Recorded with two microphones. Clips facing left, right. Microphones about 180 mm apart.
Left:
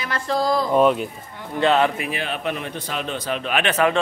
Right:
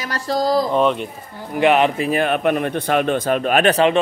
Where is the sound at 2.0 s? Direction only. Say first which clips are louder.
Right 9 dB; 45° right (ahead or behind).